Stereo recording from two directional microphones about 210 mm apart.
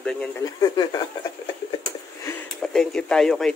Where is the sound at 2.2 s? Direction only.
5° left (ahead or behind).